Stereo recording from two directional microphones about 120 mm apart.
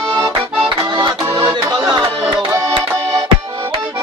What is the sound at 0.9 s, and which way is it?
Music, 40° right (ahead or behind).